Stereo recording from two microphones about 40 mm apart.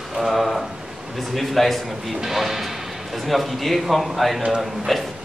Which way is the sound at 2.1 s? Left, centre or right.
Centre.